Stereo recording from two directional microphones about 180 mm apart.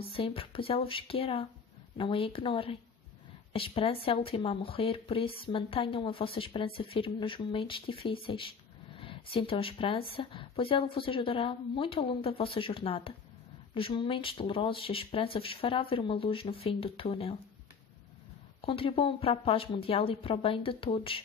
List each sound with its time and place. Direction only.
0.1 s speech: 30° left (ahead or behind)
18.7 s speech: 30° left (ahead or behind)